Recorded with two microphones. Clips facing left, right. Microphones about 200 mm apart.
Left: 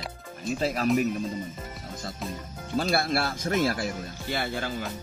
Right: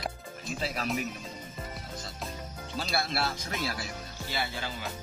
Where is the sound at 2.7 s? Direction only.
50° left (ahead or behind).